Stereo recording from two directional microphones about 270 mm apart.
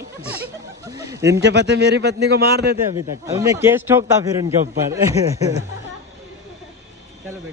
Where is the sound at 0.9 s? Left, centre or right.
Centre.